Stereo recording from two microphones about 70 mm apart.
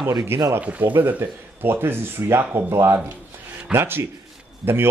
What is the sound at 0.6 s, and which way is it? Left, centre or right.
Speech, right.